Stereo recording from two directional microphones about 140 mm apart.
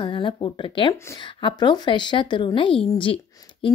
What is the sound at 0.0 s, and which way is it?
A woman's voice, 35° left (ahead or behind).